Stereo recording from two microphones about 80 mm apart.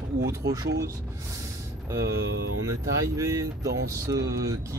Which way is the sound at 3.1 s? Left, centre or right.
Right.